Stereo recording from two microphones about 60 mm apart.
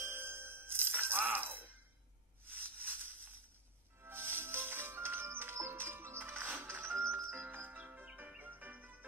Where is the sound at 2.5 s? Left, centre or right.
Right.